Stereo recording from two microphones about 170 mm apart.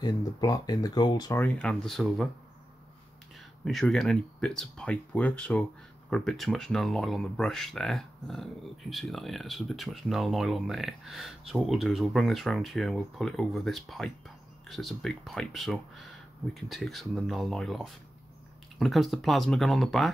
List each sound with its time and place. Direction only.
0.0 s speech: 25° left (ahead or behind)
1.4 s speech: 5° left (ahead or behind)
3.6 s speech: 5° left (ahead or behind)